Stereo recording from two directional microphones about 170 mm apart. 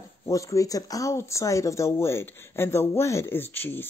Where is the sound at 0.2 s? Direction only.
20° left (ahead or behind).